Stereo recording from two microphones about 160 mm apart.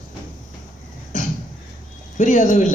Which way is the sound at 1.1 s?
55° left (ahead or behind).